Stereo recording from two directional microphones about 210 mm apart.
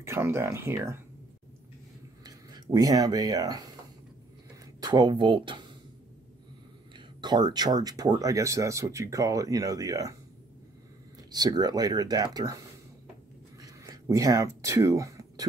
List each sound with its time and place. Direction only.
0.0 s speech: 10° right (ahead or behind)
2.2 s speech: 20° right (ahead or behind)
4.8 s speech: 20° right (ahead or behind)
7.2 s speech: 20° right (ahead or behind)
11.3 s speech: 20° right (ahead or behind)
13.6 s a sound: 15° right (ahead or behind)